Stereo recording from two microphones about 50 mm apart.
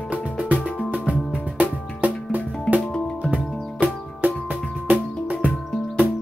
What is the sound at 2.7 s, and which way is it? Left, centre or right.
Music, left.